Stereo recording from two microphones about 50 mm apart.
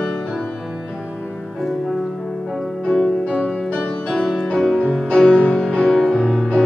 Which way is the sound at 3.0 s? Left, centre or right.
Centre.